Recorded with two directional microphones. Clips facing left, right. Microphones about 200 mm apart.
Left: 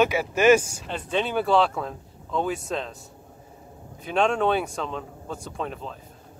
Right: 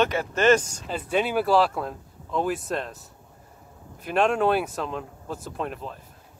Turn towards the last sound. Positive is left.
turn(degrees=-5)  # may be behind; listen again after turning